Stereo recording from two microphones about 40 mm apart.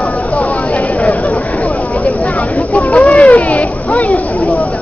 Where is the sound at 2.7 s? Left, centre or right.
Left.